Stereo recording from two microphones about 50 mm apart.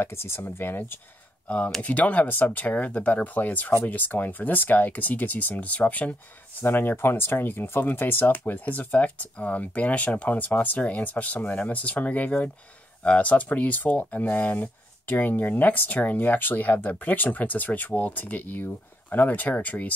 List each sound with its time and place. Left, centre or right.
0.0 s speech: left
1.8 s speech: left
6.6 s speech: left